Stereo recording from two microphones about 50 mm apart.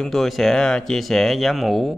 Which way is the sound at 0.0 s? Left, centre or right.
Centre.